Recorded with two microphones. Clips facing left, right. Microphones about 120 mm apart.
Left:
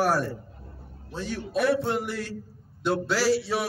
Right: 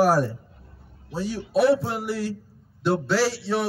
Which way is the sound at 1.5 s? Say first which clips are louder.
Right 5 dB; 30° right (ahead or behind).